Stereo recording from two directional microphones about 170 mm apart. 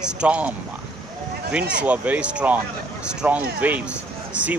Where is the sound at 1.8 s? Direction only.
10° right (ahead or behind).